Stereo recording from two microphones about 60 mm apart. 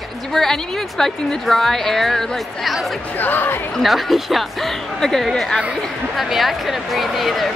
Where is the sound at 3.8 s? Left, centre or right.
Centre.